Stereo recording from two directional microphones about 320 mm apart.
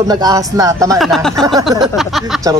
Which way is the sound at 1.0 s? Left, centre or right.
Centre.